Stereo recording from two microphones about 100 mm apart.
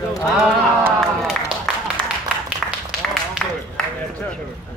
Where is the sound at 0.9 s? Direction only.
5° left (ahead or behind).